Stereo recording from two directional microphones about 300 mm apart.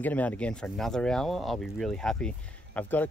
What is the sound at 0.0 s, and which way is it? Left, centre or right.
Speech, centre.